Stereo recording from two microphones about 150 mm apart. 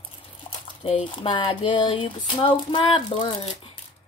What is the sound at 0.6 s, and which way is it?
Speech, 40° left (ahead or behind).